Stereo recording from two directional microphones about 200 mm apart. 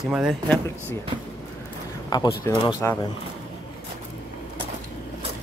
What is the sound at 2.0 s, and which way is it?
Speech, 15° left (ahead or behind).